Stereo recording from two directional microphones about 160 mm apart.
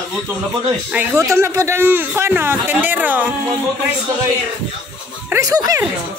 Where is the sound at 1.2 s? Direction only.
15° right (ahead or behind).